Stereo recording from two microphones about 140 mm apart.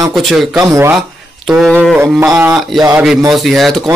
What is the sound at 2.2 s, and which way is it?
A man's voice, 10° right (ahead or behind).